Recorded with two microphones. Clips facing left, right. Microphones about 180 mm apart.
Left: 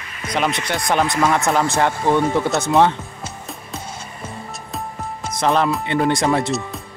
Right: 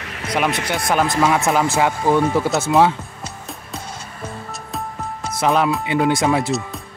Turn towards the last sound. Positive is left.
turn(degrees=0)  # may be behind; listen again after turning